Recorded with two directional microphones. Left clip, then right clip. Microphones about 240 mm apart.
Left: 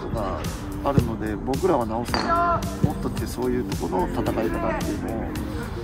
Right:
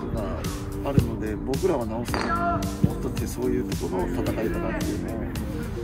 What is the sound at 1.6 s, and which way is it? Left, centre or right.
Speech, centre.